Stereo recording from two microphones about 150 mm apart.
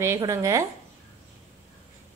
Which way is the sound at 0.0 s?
20° right (ahead or behind).